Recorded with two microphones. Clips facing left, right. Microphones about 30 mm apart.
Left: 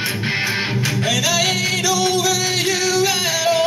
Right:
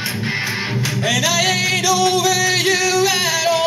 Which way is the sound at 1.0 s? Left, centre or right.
Right.